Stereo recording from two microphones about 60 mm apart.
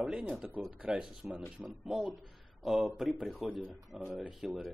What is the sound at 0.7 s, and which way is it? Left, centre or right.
Speech, centre.